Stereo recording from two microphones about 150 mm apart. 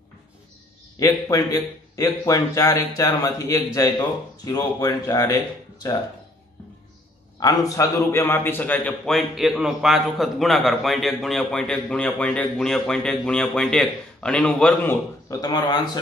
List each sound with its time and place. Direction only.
0.9 s speech: 20° left (ahead or behind)
7.3 s a man's voice: 25° left (ahead or behind); by 15.0 s 5° left (ahead or behind)
15.2 s speech: 25° left (ahead or behind)